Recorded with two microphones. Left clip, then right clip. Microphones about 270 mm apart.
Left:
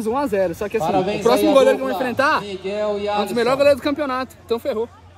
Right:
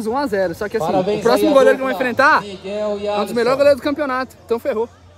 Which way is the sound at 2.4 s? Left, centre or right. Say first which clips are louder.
Even; right.